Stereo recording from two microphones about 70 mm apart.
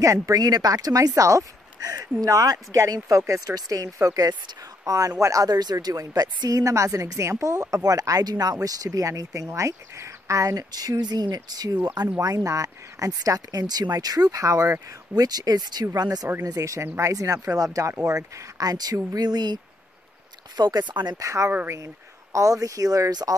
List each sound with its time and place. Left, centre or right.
0.0 s speech: right
5.5 s speech: right
9.5 s speech: right
12.4 s speech: right
16.4 s speech: right
21.2 s speech: right